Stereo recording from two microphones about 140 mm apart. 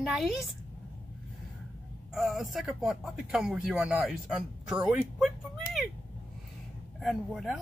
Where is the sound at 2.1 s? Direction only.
Centre (ahead or behind).